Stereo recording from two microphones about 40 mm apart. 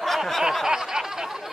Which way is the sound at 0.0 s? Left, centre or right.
Centre.